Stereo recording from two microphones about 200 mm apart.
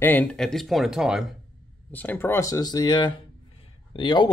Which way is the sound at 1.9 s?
10° left (ahead or behind).